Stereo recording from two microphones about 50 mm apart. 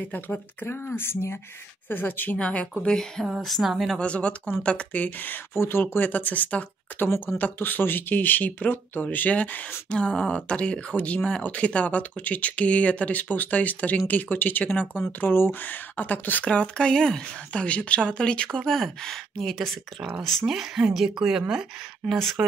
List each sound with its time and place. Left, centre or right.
0.0 s speech: left
1.9 s speech: left
2.3 s speech: left; by 3.9 s centre
4.0 s speech: left
5.5 s speech: left
6.0 s speech: left
9.8 s speech: centre; by 16.4 s left
16.4 s speech: left; by 21.6 s centre
22.0 s speech: centre